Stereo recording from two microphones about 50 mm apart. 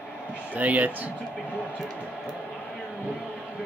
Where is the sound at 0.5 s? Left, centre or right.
Right.